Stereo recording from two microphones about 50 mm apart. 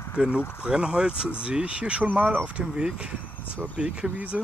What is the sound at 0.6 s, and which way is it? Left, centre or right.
Speech, centre.